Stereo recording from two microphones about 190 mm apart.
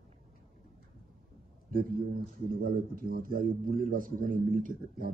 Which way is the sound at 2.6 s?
50° right (ahead or behind).